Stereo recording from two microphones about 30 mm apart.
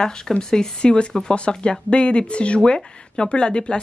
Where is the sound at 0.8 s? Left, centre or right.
Left.